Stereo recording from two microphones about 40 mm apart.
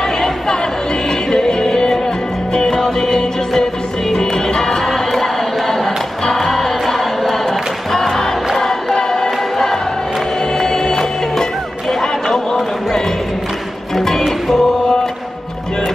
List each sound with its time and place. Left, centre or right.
1.3 s music: centre
13.9 s music: centre